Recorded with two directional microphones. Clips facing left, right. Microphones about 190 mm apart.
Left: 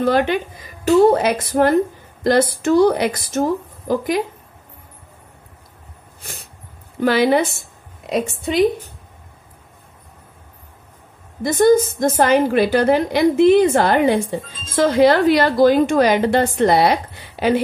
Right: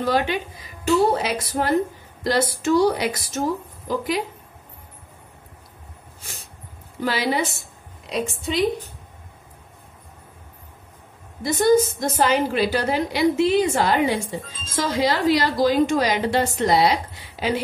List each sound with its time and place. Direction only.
0.0 s a woman's voice: 55° left (ahead or behind)
7.0 s a woman's voice: 55° left (ahead or behind)
11.4 s a woman's voice: 50° left (ahead or behind)